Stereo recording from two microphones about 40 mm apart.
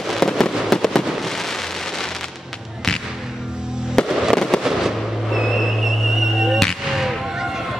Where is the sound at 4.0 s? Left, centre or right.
Centre.